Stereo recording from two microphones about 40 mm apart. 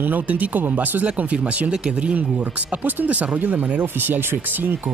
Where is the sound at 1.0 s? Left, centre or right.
Right.